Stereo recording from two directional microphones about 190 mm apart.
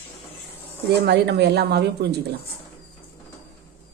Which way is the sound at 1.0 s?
60° right (ahead or behind).